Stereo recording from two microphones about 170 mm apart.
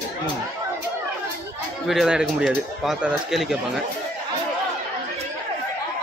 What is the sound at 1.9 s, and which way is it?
Speech, 5° right (ahead or behind).